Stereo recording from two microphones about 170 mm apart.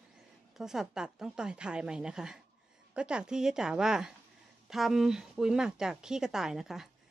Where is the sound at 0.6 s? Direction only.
Centre (ahead or behind).